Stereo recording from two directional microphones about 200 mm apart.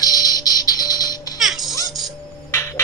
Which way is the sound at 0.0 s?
20° left (ahead or behind).